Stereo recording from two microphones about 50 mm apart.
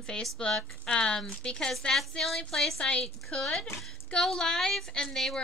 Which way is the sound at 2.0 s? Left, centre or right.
Centre.